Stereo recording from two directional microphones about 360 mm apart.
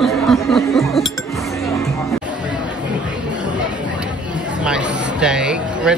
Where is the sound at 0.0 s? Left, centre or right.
Centre.